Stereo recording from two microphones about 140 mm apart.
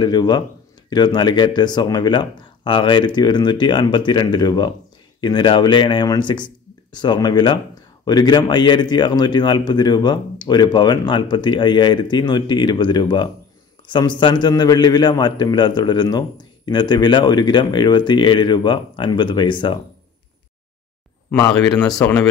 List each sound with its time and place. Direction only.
0.0 s speech: 30° left (ahead or behind)
22.0 s speech: 15° left (ahead or behind)